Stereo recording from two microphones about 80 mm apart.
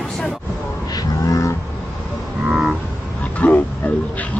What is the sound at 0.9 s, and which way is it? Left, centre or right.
Vehicle, left.